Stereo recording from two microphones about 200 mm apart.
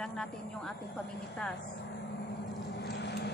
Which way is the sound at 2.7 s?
60° left (ahead or behind).